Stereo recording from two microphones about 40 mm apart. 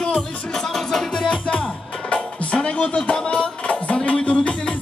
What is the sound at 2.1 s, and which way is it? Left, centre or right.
Music, left.